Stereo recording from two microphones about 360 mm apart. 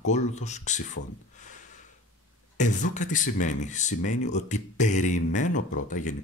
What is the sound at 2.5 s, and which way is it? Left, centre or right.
Speech, centre.